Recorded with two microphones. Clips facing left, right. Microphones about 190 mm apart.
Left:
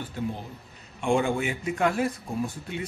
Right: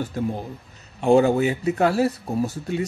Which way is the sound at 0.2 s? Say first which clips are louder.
Right 6 dB; 45° right (ahead or behind).